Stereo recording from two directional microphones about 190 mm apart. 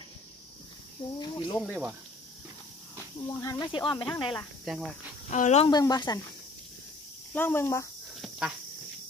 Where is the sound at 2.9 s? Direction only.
15° left (ahead or behind).